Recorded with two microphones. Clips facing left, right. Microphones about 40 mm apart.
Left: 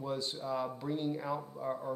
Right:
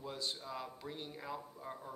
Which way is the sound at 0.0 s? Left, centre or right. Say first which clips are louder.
Left 6 dB; centre.